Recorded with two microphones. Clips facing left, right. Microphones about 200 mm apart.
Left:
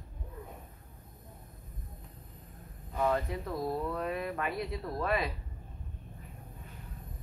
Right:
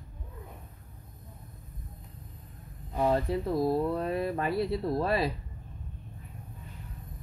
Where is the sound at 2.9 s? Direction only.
30° right (ahead or behind).